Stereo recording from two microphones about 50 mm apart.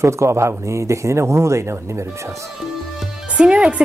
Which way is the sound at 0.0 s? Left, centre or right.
Right.